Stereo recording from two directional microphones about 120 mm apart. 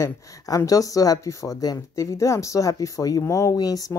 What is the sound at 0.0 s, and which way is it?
Speech, 25° left (ahead or behind).